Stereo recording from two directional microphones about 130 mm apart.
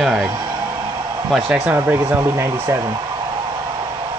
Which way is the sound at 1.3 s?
5° right (ahead or behind).